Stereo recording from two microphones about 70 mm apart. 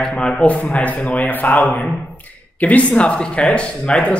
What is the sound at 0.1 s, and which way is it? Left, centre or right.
A man's voice, centre.